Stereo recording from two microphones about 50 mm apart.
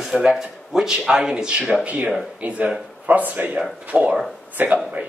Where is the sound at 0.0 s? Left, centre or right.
Centre.